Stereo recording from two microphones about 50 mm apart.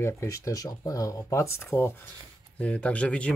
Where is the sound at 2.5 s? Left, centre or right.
Left.